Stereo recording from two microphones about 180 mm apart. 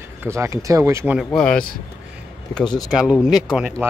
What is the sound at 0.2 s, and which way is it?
Speech, 15° right (ahead or behind).